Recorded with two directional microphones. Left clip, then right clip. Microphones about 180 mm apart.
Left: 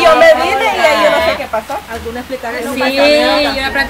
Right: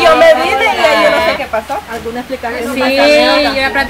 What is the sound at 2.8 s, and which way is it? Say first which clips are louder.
Speech: right 2 dB; centre (ahead or behind).